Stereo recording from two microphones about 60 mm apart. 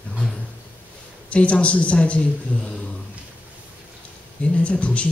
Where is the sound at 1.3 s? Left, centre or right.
Left.